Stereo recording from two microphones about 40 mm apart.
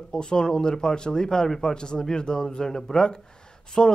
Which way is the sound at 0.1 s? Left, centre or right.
Left.